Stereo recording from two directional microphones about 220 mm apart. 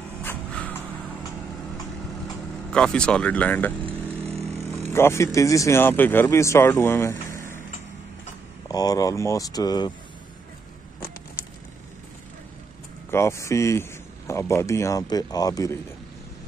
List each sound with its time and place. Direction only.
0.2 s a sound: 5° left (ahead or behind)
2.7 s speech: 5° left (ahead or behind)
4.9 s speech: 10° left (ahead or behind)
8.6 s speech: 15° left (ahead or behind)
13.1 s speech: 10° left (ahead or behind)